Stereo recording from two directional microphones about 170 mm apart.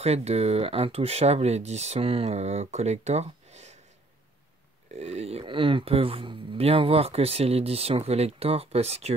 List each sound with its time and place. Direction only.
0.0 s speech: 40° right (ahead or behind)
4.9 s speech: 40° right (ahead or behind)